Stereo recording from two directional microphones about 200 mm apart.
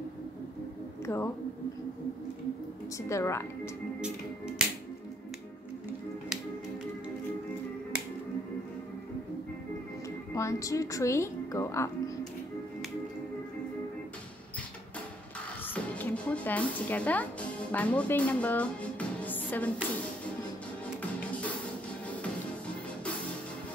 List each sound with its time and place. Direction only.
1.0 s speech: 15° left (ahead or behind)
3.1 s speech: 15° left (ahead or behind)
4.0 s music: 5° right (ahead or behind)
5.9 s music: centre (ahead or behind)
10.0 s a woman's voice: 15° left (ahead or behind)
15.6 s a woman's voice: 10° left (ahead or behind)
21.0 s music: 5° left (ahead or behind)